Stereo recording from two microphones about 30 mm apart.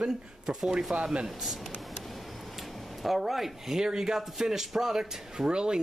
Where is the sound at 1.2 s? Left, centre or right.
Centre.